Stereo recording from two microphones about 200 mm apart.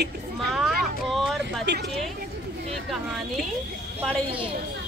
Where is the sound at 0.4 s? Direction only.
Centre (ahead or behind).